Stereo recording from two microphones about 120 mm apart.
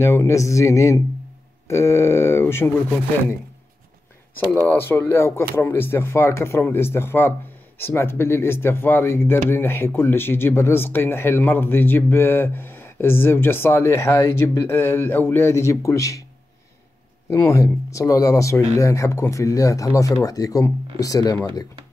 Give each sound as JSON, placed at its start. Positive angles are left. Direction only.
{"t": 0.0, "sound": "speech", "side_deg": 20}
{"t": 4.6, "sound": "speech", "side_deg": 20}
{"t": 17.3, "sound": "speech", "side_deg": 25}